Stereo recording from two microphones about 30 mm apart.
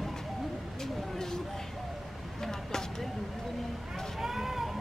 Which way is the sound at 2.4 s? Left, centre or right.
Centre.